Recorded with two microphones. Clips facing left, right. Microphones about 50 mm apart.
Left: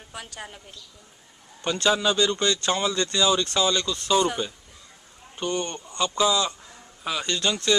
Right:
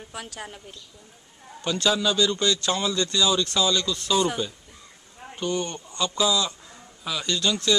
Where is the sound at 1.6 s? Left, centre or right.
Centre.